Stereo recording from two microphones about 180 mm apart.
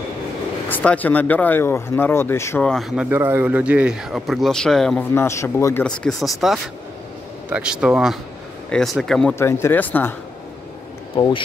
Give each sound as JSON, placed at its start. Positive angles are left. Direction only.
{"t": 0.7, "sound": "speech", "side_deg": 10}
{"t": 3.1, "sound": "speech", "side_deg": -10}
{"t": 5.1, "sound": "speech", "side_deg": 15}
{"t": 5.9, "sound": "speech", "side_deg": 0}
{"t": 9.3, "sound": "speech", "side_deg": 15}
{"t": 11.1, "sound": "speech", "side_deg": 25}